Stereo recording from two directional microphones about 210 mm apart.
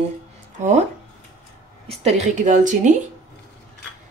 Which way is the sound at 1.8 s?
35° right (ahead or behind).